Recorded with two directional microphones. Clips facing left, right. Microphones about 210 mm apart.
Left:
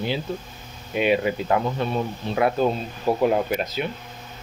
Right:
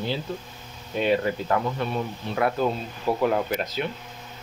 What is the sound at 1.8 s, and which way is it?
Speech, 25° left (ahead or behind).